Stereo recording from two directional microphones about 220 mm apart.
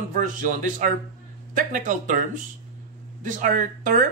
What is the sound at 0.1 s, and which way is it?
A man's voice, 35° right (ahead or behind).